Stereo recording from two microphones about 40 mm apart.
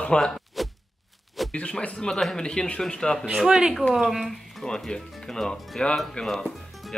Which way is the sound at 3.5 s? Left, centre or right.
Centre.